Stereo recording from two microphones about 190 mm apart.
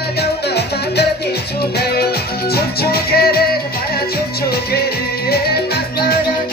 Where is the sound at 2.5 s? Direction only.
55° left (ahead or behind).